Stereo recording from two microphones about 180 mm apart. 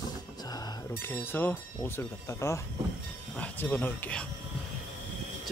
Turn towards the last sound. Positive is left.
turn(degrees=10)  # may be behind; listen again after turning